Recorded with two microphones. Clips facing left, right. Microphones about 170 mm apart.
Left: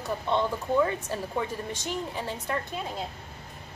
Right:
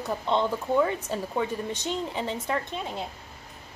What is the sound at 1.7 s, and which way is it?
Speech, 20° right (ahead or behind).